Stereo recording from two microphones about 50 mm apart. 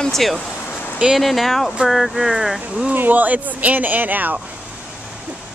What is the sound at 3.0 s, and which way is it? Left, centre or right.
Speech, right.